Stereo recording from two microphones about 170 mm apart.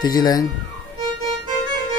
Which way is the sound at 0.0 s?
25° left (ahead or behind).